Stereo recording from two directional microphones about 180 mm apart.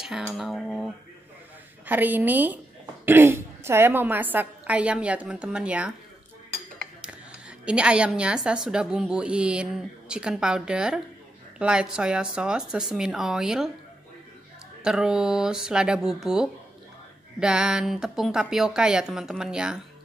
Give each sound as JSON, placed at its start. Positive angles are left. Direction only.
{"t": 0.0, "sound": "a woman's voice", "side_deg": 0}
{"t": 6.8, "sound": "a sound", "side_deg": -5}
{"t": 8.5, "sound": "a woman's voice", "side_deg": -5}
{"t": 14.8, "sound": "a woman's voice", "side_deg": -5}